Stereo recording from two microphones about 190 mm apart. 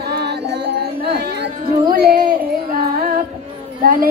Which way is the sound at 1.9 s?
55° right (ahead or behind).